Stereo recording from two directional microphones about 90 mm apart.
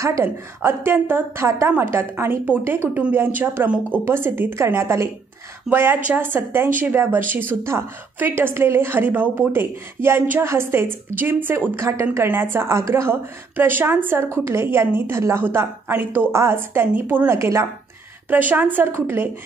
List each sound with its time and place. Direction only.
0.0 s speech: 30° right (ahead or behind)
18.3 s speech: 20° right (ahead or behind)